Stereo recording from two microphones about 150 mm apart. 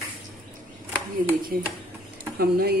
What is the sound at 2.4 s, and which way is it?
Speech, 90° right.